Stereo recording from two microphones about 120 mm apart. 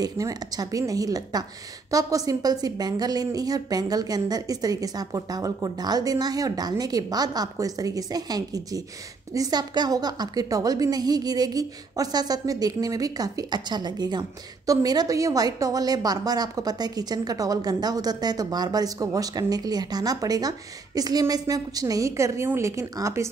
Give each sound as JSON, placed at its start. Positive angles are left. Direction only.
{"t": 0.0, "sound": "a woman's voice", "side_deg": -30}